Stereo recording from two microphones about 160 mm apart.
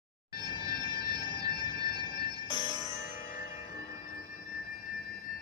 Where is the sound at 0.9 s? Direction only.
30° right (ahead or behind).